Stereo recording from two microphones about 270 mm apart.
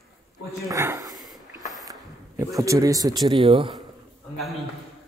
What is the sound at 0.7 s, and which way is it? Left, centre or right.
Speech, centre.